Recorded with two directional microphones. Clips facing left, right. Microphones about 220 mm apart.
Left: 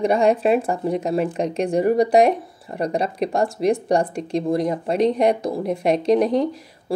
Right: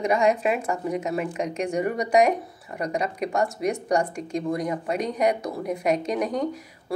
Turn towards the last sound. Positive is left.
turn(degrees=30)  # may be behind; listen again after turning